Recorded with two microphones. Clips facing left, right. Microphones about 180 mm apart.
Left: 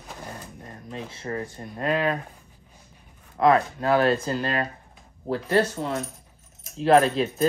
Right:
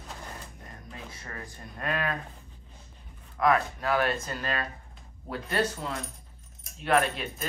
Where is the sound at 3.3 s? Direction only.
30° left (ahead or behind).